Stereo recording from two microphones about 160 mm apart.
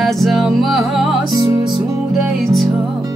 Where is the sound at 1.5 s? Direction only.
25° right (ahead or behind).